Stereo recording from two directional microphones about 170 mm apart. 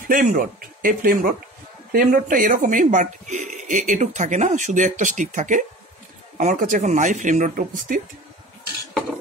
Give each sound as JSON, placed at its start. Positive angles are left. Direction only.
{"t": 0.1, "sound": "speech", "side_deg": -50}